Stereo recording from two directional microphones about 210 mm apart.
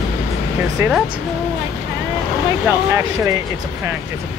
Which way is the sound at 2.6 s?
10° right (ahead or behind).